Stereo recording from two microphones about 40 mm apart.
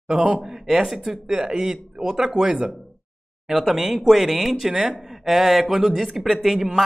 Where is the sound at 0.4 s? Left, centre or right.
Centre.